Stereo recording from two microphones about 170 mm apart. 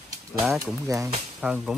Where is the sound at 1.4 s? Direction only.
5° right (ahead or behind).